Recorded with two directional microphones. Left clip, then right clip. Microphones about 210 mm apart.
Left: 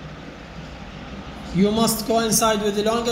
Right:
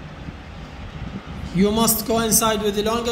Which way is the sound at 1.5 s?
30° right (ahead or behind).